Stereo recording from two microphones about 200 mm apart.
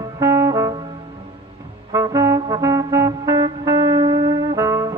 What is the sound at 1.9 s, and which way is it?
Music, 15° right (ahead or behind).